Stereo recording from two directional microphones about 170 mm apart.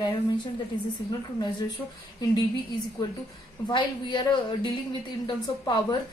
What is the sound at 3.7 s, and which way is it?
Speech, 25° left (ahead or behind).